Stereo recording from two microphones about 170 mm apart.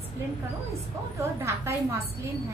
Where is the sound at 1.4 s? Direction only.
15° right (ahead or behind).